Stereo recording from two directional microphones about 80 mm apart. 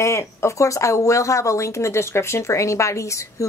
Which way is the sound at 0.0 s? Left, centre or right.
Left.